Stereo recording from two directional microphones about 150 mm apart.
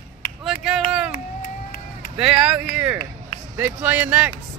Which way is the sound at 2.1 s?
5° right (ahead or behind).